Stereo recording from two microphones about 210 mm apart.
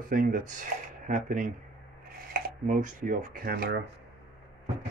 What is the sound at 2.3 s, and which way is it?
Dishes, 40° right (ahead or behind).